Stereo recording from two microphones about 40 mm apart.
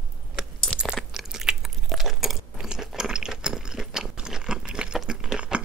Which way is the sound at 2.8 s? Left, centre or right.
Centre.